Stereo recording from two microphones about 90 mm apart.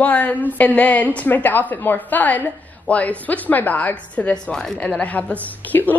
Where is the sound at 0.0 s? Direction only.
20° left (ahead or behind).